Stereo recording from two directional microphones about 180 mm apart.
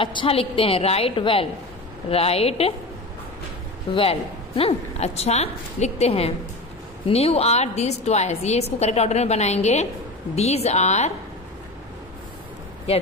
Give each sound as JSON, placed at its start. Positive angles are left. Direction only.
{"t": 0.0, "sound": "a woman's voice", "side_deg": 30}
{"t": 3.9, "sound": "a woman's voice", "side_deg": 30}